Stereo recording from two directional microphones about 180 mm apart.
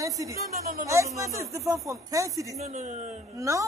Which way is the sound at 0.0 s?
20° right (ahead or behind).